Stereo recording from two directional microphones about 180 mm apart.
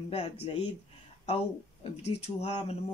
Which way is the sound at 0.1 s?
35° left (ahead or behind).